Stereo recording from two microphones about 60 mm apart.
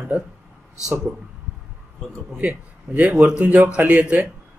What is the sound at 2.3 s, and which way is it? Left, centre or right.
A man's voice, right.